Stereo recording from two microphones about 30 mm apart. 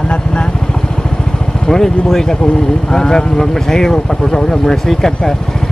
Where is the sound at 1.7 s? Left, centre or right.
Centre.